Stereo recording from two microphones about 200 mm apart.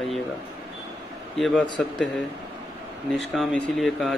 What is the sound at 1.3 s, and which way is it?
Speech, centre (ahead or behind).